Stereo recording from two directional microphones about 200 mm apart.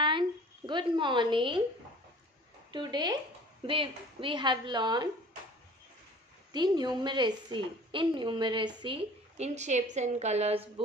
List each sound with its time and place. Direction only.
0.0 s a sound: 25° right (ahead or behind)
2.7 s a woman's voice: 20° right (ahead or behind)
6.5 s a woman's voice: 20° right (ahead or behind)